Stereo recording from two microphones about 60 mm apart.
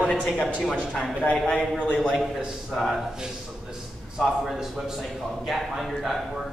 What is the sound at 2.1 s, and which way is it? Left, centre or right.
Speech, centre.